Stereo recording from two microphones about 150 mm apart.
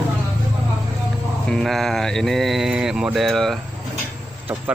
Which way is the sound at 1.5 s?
Centre (ahead or behind).